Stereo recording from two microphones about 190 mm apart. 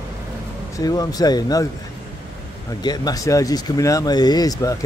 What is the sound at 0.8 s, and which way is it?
Speech, 20° left (ahead or behind).